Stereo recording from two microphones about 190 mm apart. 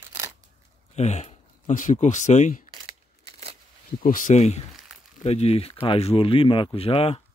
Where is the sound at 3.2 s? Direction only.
30° right (ahead or behind).